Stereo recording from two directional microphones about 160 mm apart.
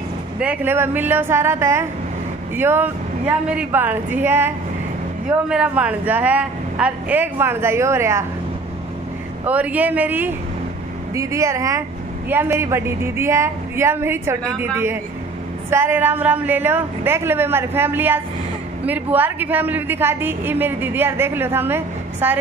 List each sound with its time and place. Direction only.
0.4 s a woman's voice: 10° right (ahead or behind)
9.5 s a woman's voice: 10° right (ahead or behind)